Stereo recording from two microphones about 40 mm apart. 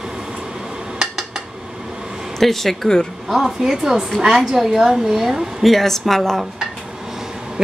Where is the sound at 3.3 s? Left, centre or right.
Centre.